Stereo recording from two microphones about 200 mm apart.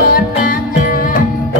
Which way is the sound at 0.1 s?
45° left (ahead or behind).